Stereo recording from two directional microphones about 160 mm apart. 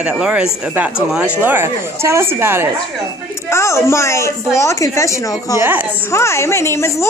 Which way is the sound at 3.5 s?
15° left (ahead or behind).